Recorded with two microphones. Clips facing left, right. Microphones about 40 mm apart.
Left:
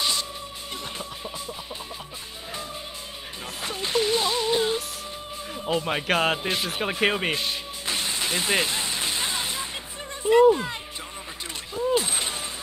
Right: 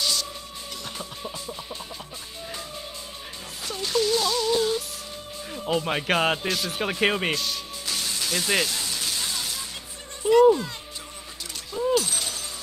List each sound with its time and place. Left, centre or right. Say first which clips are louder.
0.0 s music: left 1 dB; left
3.6 s music: even; left
5.5 s a man's voice: even; centre
6.4 s a man's voice: even; left
6.7 s speech: right 1 dB; centre
7.3 s a sound: left 1 dB; left
10.5 s a man's voice: even; left
11.9 s a sound: even; left